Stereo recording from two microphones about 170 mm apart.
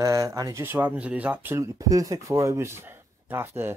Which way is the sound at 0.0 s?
20° right (ahead or behind).